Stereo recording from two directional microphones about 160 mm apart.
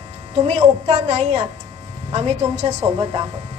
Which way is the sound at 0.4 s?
40° right (ahead or behind).